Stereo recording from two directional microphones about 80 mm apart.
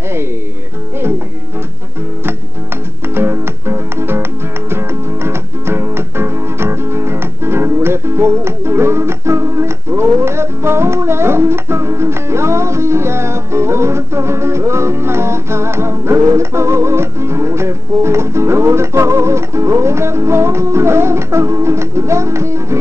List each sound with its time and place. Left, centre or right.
3.2 s music: right